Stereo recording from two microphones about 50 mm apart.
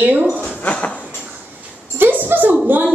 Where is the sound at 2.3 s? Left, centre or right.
Right.